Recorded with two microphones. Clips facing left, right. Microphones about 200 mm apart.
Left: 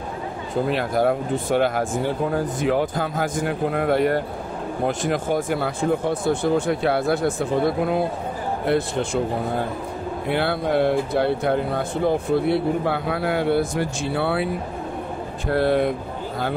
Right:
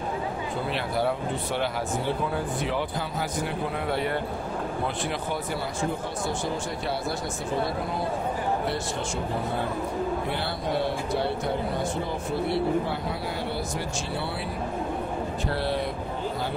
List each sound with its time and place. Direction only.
0.7 s speech: 45° left (ahead or behind)
10.3 s speech: 60° left (ahead or behind)
15.5 s speech: 55° left (ahead or behind)